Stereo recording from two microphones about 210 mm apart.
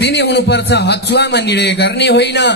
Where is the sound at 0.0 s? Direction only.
55° left (ahead or behind).